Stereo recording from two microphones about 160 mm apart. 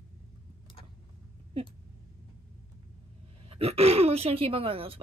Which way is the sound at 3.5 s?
40° right (ahead or behind).